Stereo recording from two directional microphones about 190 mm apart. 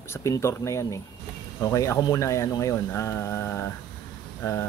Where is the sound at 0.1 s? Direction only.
15° left (ahead or behind).